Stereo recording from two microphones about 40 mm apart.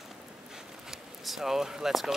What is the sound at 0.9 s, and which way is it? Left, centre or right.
Speech, centre.